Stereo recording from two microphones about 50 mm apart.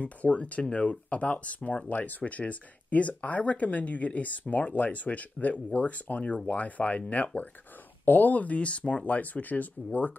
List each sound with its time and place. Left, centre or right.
0.0 s speech: left
1.9 s speech: left